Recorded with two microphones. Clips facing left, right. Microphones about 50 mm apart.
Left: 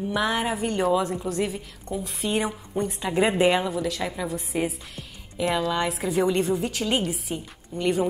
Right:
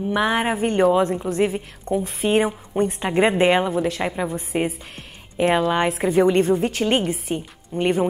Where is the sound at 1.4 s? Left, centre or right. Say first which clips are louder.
Right 6 dB; right.